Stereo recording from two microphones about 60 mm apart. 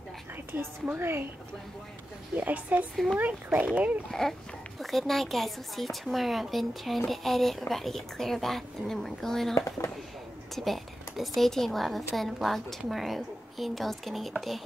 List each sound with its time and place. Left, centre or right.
0.5 s a woman's voice: right
2.3 s speech: right
4.1 s speech: centre
9.6 s speech: left
10.5 s a woman's voice: centre